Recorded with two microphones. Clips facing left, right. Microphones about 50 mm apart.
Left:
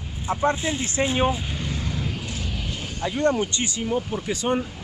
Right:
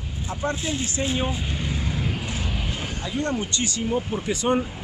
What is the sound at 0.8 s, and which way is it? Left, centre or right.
Speech, left.